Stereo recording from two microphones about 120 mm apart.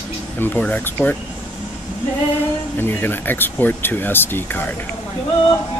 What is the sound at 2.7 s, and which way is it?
Speech, 20° left (ahead or behind).